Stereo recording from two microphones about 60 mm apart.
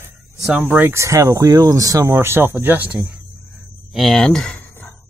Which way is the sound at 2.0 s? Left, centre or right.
Right.